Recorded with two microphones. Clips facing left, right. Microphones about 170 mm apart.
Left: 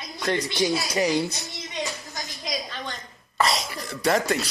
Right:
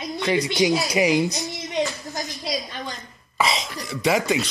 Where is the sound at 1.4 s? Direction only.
Centre (ahead or behind).